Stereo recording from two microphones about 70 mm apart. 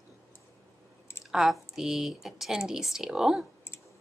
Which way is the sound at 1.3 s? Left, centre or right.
Centre.